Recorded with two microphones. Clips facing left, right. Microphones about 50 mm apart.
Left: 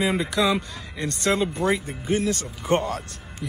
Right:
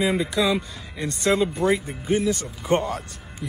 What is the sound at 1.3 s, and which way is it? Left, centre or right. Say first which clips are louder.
Speech: right 2 dB; centre.